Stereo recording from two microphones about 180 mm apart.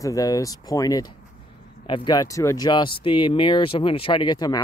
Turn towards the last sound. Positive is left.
turn(degrees=20)  # may be behind; listen again after turning